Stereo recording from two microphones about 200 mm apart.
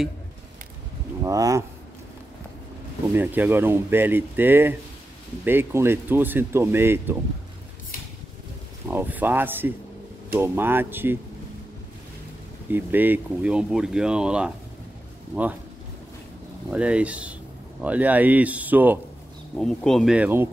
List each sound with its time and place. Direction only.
1.2 s speech: 15° right (ahead or behind)
3.2 s speech: 10° right (ahead or behind)
8.8 s speech: 10° right (ahead or behind)
12.7 s speech: 10° right (ahead or behind)
16.7 s speech: 5° right (ahead or behind)
19.5 s speech: 5° left (ahead or behind)